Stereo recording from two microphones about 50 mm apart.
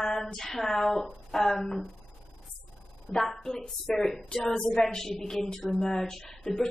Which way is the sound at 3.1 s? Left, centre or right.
Centre.